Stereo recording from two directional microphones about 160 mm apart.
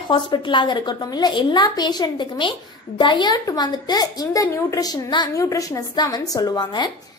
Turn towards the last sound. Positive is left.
turn(degrees=25)  # may be behind; listen again after turning